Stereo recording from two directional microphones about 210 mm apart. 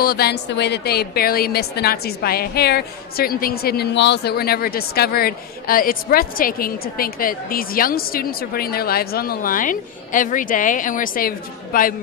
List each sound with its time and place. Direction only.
0.0 s a woman's voice: 50° left (ahead or behind)